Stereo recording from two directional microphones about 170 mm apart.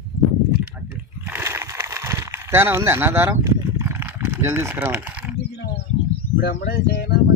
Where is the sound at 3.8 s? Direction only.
10° right (ahead or behind).